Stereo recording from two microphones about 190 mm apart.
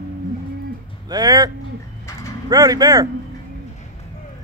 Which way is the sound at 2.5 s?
20° right (ahead or behind).